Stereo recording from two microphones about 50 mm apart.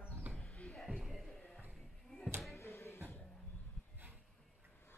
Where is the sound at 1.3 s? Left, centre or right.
Centre.